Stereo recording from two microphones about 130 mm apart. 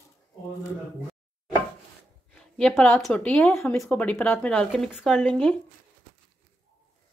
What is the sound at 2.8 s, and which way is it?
Speech, 5° left (ahead or behind).